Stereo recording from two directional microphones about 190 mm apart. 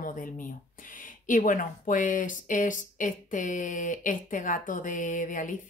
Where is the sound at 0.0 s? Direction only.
45° left (ahead or behind).